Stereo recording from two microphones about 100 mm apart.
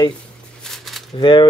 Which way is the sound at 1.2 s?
50° left (ahead or behind).